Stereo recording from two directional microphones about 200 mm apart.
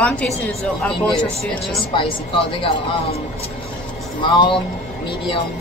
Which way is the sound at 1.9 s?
25° left (ahead or behind).